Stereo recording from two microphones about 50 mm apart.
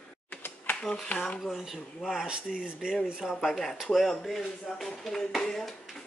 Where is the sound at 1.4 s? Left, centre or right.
Centre.